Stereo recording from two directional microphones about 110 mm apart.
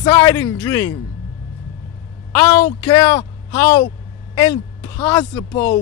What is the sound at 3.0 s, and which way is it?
Speech, 50° left (ahead or behind).